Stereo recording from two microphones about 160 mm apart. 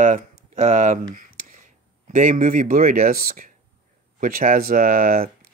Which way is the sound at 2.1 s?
55° right (ahead or behind).